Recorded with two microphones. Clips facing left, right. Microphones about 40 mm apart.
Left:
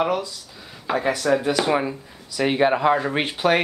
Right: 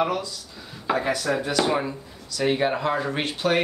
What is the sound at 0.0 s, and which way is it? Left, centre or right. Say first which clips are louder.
Speech: left 2 dB; centre.